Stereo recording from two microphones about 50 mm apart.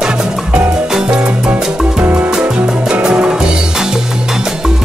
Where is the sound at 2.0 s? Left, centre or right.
Right.